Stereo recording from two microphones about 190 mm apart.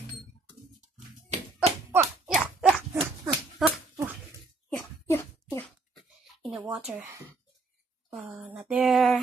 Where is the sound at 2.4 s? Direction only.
5° right (ahead or behind).